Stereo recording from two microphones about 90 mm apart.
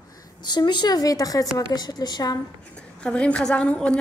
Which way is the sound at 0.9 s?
40° left (ahead or behind).